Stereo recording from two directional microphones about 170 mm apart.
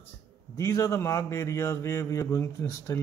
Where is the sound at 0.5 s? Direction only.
15° left (ahead or behind).